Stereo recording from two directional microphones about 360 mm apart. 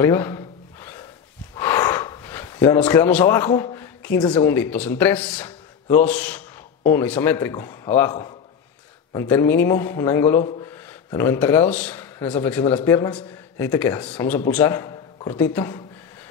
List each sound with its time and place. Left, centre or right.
0.0 s a sound: centre
1.6 s gasp: centre
3.7 s speech: centre
9.3 s a man's voice: centre